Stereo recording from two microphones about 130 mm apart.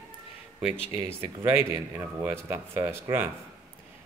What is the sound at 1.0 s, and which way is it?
Speech, 15° right (ahead or behind).